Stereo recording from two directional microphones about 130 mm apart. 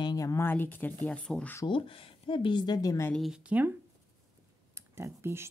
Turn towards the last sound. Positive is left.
turn(degrees=-20)  # may be behind; listen again after turning